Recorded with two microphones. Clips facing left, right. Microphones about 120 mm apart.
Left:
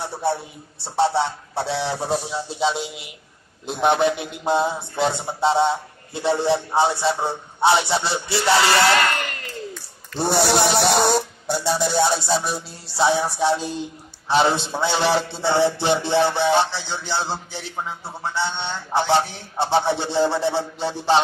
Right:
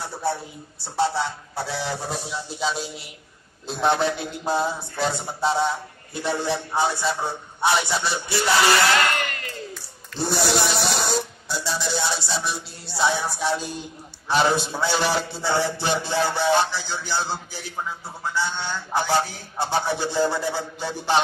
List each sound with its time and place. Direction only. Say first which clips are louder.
0.0 s a man's voice: left 3 dB; 25° left (ahead or behind)
10.1 s a man's voice: left 4 dB; 60° left (ahead or behind); by 21.2 s 30° left (ahead or behind)